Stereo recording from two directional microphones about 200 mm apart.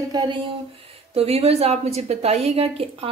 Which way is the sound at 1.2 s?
30° right (ahead or behind).